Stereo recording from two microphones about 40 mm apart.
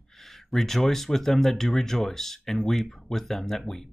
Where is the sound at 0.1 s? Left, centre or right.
Centre.